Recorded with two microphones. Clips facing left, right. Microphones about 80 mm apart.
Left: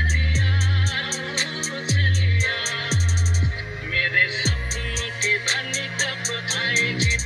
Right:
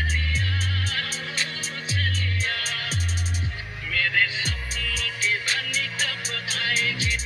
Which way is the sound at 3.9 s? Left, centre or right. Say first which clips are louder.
Left 2 dB; left.